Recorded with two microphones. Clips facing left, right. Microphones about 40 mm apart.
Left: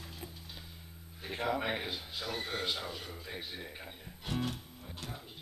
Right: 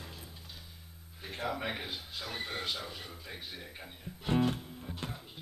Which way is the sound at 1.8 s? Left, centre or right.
Centre.